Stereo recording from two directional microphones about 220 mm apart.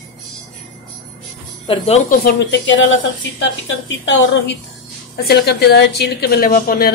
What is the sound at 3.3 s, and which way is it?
A woman's voice, 60° left (ahead or behind).